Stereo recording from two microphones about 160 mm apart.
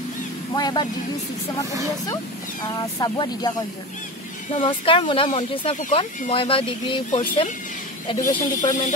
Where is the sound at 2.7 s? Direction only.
25° left (ahead or behind).